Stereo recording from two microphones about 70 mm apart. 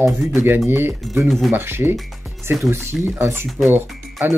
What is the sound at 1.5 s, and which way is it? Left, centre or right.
Speech, right.